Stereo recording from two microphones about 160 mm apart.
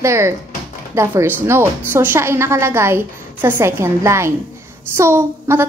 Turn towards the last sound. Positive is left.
turn(degrees=-15)  # may be behind; listen again after turning